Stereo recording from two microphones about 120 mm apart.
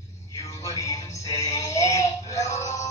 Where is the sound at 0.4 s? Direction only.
30° left (ahead or behind).